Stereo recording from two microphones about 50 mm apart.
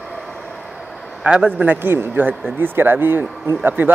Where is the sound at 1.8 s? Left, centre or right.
Right.